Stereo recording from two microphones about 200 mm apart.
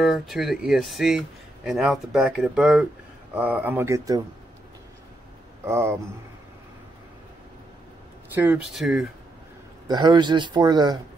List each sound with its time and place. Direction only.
0.0 s speech: centre (ahead or behind); by 4.2 s 15° right (ahead or behind)
5.7 s speech: 15° right (ahead or behind)
8.4 s speech: 5° right (ahead or behind)
9.8 s speech: 20° right (ahead or behind)